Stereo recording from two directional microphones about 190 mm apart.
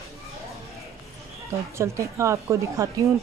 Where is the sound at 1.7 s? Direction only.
15° right (ahead or behind).